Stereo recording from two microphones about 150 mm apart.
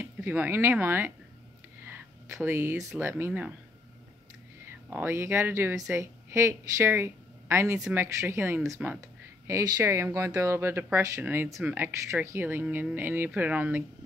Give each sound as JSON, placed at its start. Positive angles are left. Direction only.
{"t": 0.0, "sound": "speech", "side_deg": -10}
{"t": 1.9, "sound": "a sound", "side_deg": -15}
{"t": 2.4, "sound": "speech", "side_deg": -15}
{"t": 4.8, "sound": "speech", "side_deg": -15}